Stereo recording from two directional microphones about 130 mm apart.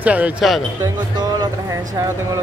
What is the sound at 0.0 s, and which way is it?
Speech, 10° right (ahead or behind).